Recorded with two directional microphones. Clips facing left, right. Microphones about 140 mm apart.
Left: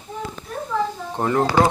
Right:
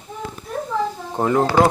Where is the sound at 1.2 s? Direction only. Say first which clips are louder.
Right 2 dB; 20° right (ahead or behind).